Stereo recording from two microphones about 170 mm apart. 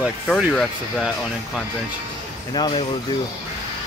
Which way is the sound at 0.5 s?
5° left (ahead or behind).